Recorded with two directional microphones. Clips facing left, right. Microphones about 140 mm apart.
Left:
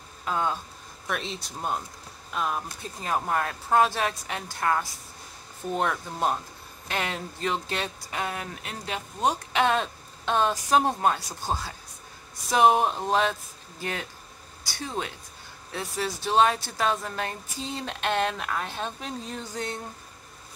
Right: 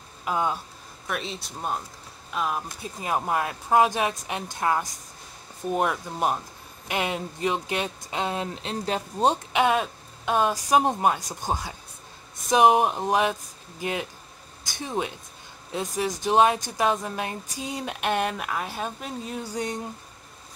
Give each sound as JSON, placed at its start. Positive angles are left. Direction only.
{"t": 0.2, "sound": "speech", "side_deg": -10}
{"t": 9.5, "sound": "speech", "side_deg": -15}